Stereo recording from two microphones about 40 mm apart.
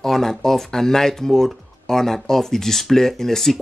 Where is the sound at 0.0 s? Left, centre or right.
Centre.